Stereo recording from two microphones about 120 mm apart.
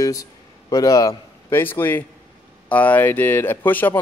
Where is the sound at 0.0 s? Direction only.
30° left (ahead or behind).